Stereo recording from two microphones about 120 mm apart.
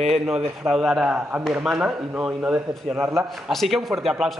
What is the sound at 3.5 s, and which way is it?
Speech, centre (ahead or behind).